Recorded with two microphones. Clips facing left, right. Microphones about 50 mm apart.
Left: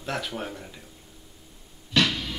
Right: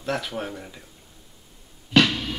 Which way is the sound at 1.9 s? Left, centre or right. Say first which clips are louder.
Right 5 dB; right.